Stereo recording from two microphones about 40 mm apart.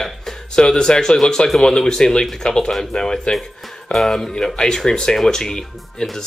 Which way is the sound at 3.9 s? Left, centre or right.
Centre.